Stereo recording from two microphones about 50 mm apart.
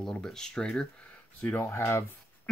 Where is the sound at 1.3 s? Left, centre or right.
Left.